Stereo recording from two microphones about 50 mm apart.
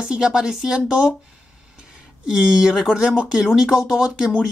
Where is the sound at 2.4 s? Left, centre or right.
Centre.